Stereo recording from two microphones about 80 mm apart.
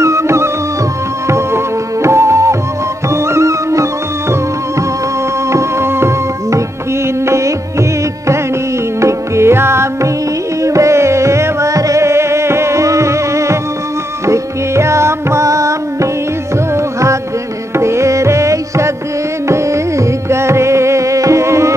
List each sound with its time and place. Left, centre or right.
0.0 s music: right
5.5 s music: right
9.0 s music: right